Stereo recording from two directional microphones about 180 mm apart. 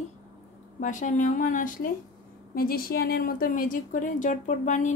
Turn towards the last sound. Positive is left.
turn(degrees=40)  # may be behind; listen again after turning